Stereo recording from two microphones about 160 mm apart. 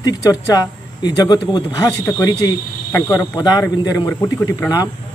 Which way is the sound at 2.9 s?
20° left (ahead or behind).